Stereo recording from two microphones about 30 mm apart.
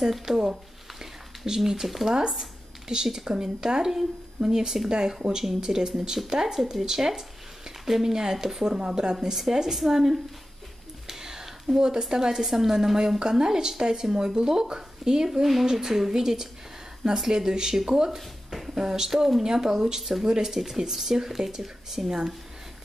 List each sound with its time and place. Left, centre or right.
0.2 s a woman's voice: centre
5.4 s a woman's voice: centre
11.1 s a sound: centre
12.1 s a woman's voice: centre